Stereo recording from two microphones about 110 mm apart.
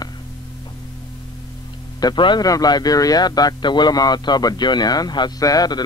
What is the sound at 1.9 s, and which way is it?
Speech, 40° left (ahead or behind).